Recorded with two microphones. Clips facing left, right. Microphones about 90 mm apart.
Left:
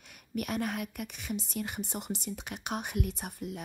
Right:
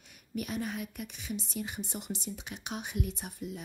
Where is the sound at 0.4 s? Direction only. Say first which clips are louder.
Left 2 dB; 60° left (ahead or behind).